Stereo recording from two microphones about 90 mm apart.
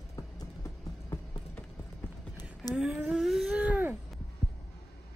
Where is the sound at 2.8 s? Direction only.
5° right (ahead or behind).